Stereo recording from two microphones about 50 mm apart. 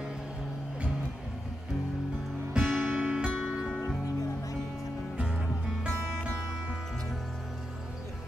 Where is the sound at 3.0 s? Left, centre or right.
Centre.